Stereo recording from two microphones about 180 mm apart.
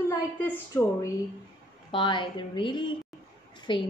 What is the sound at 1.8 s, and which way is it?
A woman's voice, 25° left (ahead or behind).